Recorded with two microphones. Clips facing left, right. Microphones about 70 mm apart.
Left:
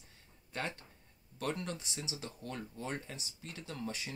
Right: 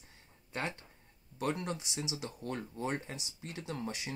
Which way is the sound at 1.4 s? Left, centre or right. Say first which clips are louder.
Right 3 dB; centre.